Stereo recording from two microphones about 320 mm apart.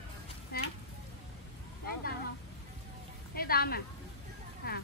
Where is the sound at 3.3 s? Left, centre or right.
Left.